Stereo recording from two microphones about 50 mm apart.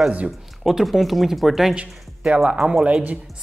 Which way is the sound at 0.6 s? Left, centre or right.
Centre.